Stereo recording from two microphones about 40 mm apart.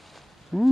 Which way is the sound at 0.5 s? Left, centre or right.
Centre.